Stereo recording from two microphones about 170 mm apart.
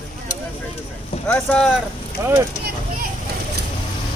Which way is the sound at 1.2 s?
5° left (ahead or behind).